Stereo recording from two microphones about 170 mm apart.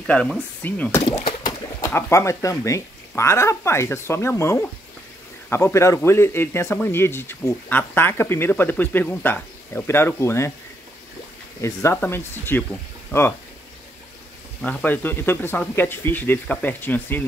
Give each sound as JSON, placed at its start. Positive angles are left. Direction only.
{"t": 0.0, "sound": "speech", "side_deg": 5}
{"t": 1.0, "sound": "speech", "side_deg": 30}
{"t": 1.9, "sound": "speech", "side_deg": 15}
{"t": 11.6, "sound": "speech", "side_deg": 15}
{"t": 14.6, "sound": "speech", "side_deg": 10}